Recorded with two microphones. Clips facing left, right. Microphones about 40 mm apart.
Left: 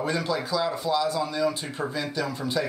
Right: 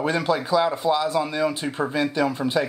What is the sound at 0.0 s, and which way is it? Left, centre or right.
Speech, right.